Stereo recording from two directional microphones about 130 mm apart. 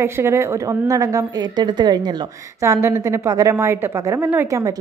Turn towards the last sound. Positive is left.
turn(degrees=-20)  # may be behind; listen again after turning